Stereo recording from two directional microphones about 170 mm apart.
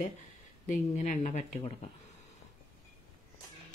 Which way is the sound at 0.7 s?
45° left (ahead or behind).